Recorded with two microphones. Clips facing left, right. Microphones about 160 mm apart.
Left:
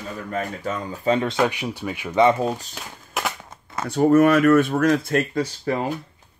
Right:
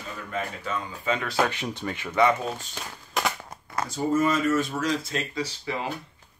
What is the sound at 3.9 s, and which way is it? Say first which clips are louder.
Speech: left 9 dB; 65° left (ahead or behind).